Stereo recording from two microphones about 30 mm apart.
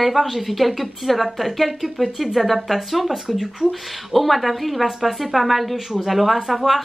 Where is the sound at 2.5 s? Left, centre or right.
Centre.